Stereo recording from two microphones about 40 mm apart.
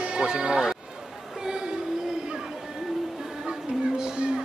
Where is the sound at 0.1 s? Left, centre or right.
Centre.